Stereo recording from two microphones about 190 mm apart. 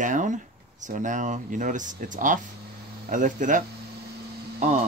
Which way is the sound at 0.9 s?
40° right (ahead or behind).